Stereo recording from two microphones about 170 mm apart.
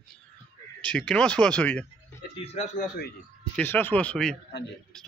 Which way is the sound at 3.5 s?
10° left (ahead or behind).